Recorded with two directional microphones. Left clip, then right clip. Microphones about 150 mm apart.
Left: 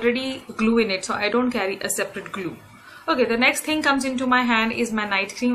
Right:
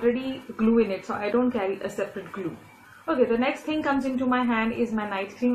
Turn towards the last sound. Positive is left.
turn(degrees=15)  # may be behind; listen again after turning